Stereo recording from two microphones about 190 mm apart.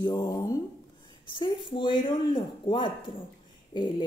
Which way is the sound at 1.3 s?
25° left (ahead or behind).